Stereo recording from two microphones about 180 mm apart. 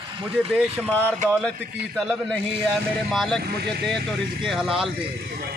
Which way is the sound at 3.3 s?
65° right (ahead or behind).